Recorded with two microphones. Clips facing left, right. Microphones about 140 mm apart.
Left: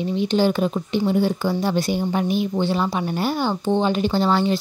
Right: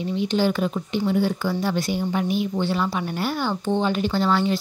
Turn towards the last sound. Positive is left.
turn(degrees=25)  # may be behind; listen again after turning